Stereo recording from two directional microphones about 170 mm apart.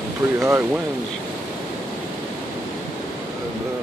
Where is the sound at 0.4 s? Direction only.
15° right (ahead or behind).